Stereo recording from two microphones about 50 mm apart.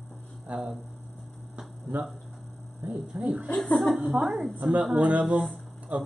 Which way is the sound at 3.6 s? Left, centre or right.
Centre.